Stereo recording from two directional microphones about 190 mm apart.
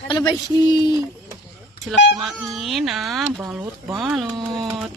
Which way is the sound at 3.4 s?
15° right (ahead or behind).